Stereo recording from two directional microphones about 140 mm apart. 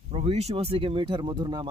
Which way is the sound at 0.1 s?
50° right (ahead or behind).